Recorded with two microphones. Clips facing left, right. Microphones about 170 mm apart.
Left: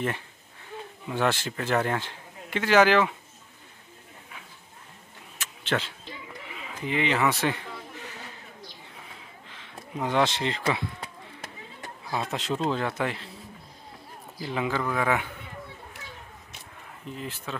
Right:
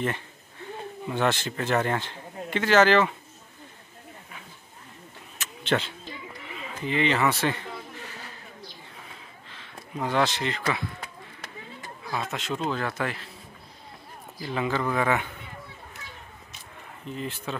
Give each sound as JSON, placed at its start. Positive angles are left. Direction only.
{"t": 1.0, "sound": "speech", "side_deg": 5}
{"t": 5.4, "sound": "a sound", "side_deg": 5}
{"t": 6.5, "sound": "speech", "side_deg": 10}
{"t": 9.5, "sound": "speech", "side_deg": 15}
{"t": 12.3, "sound": "speech", "side_deg": 30}
{"t": 14.4, "sound": "speech", "side_deg": 10}
{"t": 14.8, "sound": "speech", "side_deg": 0}
{"t": 17.1, "sound": "speech", "side_deg": 5}